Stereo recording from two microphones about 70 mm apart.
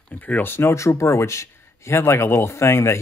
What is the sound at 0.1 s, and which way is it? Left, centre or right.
Speech, left.